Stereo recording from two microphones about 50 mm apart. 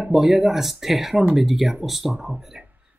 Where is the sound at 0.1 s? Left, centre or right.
Centre.